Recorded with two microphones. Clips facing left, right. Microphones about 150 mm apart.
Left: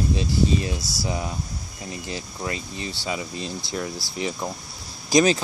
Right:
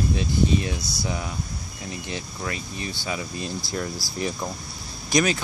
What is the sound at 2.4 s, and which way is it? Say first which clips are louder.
Speech: left 3 dB; 25° left (ahead or behind).